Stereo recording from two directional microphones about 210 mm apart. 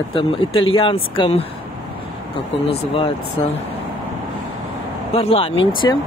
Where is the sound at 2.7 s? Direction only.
25° left (ahead or behind).